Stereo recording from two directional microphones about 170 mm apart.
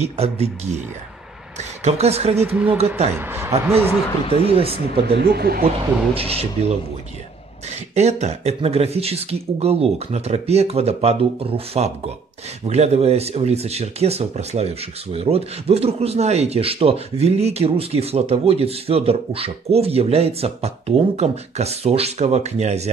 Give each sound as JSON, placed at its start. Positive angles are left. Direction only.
{"t": 0.0, "sound": "speech", "side_deg": -40}
{"t": 2.5, "sound": "speech", "side_deg": -10}
{"t": 4.3, "sound": "speech", "side_deg": -35}
{"t": 5.1, "sound": "speech", "side_deg": -70}
{"t": 6.1, "sound": "speech", "side_deg": -35}
{"t": 7.9, "sound": "speech", "side_deg": -40}